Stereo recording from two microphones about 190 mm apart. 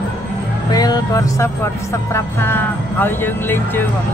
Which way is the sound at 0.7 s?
20° left (ahead or behind).